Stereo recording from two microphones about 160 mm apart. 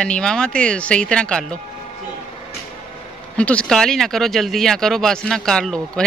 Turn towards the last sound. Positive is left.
turn(degrees=5)  # may be behind; listen again after turning